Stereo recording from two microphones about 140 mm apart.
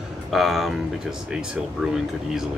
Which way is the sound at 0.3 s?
Centre (ahead or behind).